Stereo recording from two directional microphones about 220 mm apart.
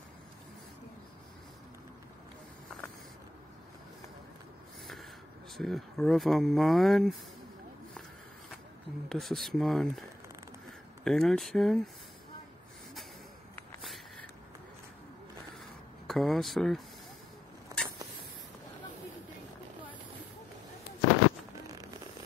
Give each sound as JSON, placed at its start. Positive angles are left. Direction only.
{"t": 5.6, "sound": "speech", "side_deg": 0}
{"t": 9.1, "sound": "speech", "side_deg": 0}
{"t": 11.1, "sound": "speech", "side_deg": 0}
{"t": 16.1, "sound": "speech", "side_deg": 0}
{"t": 17.7, "sound": "a sound", "side_deg": -15}